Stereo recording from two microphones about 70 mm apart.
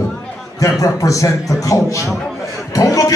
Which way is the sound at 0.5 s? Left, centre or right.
Left.